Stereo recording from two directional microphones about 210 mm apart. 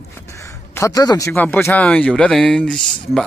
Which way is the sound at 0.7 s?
15° left (ahead or behind).